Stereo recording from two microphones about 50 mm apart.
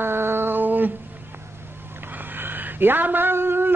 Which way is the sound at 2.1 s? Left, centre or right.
Right.